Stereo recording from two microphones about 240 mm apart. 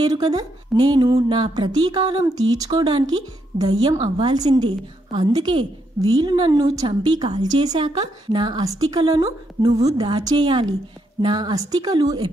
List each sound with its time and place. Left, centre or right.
0.0 s speech: centre